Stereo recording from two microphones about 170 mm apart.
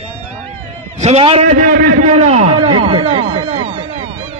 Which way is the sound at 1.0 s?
35° right (ahead or behind).